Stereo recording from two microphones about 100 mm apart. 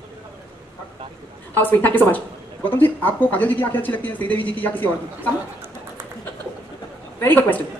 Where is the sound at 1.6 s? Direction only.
20° left (ahead or behind).